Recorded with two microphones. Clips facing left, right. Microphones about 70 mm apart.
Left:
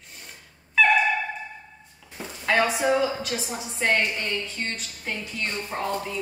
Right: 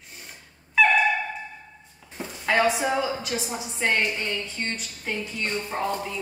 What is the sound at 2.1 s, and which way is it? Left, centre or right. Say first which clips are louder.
A woman's voice: even; centre.